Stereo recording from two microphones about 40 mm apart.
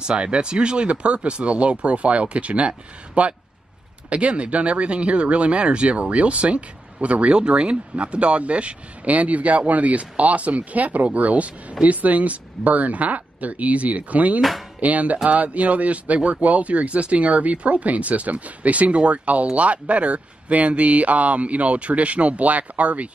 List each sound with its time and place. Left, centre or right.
0.0 s speech: right